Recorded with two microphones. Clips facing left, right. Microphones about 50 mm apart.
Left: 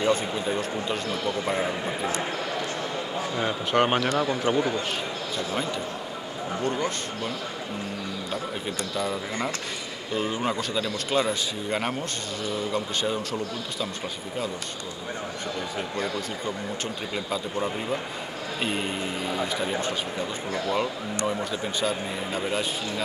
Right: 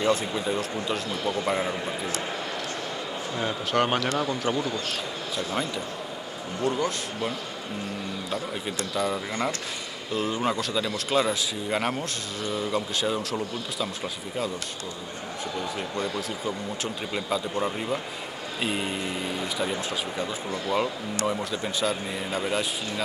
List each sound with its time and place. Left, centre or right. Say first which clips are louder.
0.0 s speech: even; centre
3.3 s speech: left 2 dB; centre
8.9 s speech: right 2 dB; centre
16.4 s speech: even; centre